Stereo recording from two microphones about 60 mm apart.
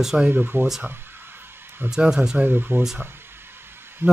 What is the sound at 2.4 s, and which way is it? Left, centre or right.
Speech, right.